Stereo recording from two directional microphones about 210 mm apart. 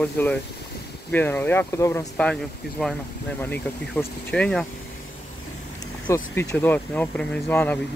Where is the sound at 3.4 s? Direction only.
10° left (ahead or behind).